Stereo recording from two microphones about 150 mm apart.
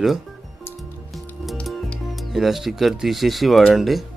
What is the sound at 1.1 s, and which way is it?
Music, centre (ahead or behind).